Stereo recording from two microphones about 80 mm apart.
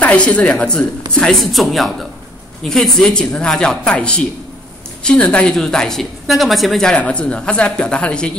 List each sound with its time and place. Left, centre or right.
0.0 s a woman's voice: centre
7.0 s a woman's voice: centre